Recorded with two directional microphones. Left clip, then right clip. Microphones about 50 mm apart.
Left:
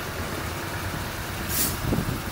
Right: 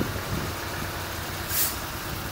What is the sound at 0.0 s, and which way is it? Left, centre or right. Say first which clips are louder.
Vehicle: even; centre.